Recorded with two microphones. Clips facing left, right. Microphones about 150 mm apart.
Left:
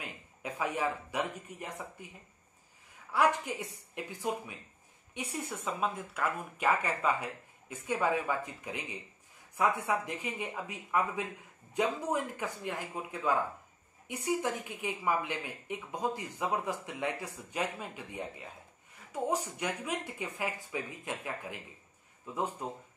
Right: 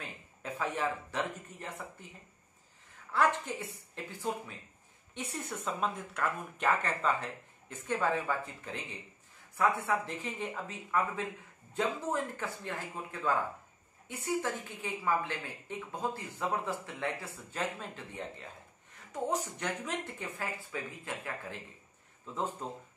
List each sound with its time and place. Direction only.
0.0 s speech: 10° left (ahead or behind)
3.1 s a woman's voice: 10° left (ahead or behind)